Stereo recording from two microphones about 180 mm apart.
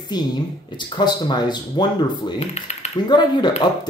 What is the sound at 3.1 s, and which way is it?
Speech, 25° left (ahead or behind).